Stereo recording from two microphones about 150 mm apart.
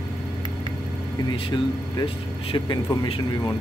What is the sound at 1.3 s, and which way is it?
Speech, 30° left (ahead or behind).